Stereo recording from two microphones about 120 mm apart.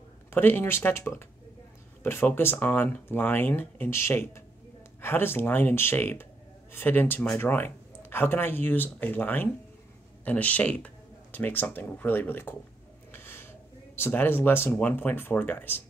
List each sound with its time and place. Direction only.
0.3 s speech: 15° left (ahead or behind)
13.1 s a sound: 20° left (ahead or behind)
13.9 s speech: 15° left (ahead or behind)